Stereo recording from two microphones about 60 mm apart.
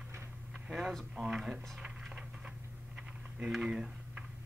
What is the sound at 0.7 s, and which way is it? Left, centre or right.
Speech, centre.